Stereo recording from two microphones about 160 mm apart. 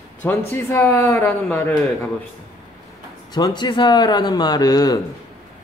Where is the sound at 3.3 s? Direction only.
25° left (ahead or behind).